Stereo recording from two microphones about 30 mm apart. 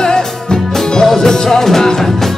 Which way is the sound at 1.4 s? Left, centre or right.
Centre.